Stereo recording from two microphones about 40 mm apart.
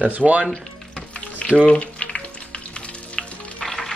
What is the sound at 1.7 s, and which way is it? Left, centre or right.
Frying, left.